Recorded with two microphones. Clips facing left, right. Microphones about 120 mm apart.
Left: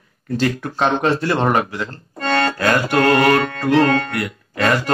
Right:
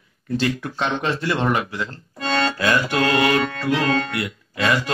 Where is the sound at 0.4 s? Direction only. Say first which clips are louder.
Left 5 dB; 45° left (ahead or behind).